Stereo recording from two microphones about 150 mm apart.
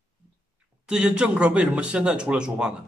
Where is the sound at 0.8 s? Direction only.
5° right (ahead or behind).